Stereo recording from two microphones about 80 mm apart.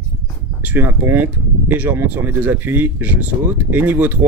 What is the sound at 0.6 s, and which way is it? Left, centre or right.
Speech, right.